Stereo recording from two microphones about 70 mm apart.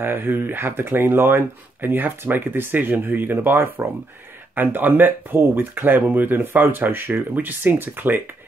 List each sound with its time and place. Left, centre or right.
0.0 s speech: right